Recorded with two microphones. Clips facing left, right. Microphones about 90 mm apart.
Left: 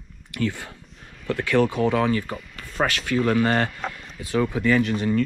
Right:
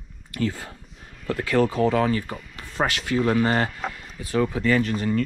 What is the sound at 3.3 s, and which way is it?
Speech, 40° right (ahead or behind).